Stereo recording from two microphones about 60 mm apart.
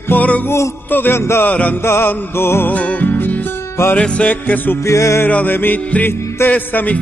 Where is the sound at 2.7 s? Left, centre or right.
Left.